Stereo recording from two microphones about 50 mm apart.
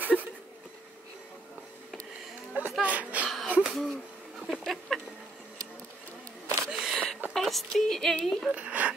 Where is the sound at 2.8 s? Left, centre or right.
Right.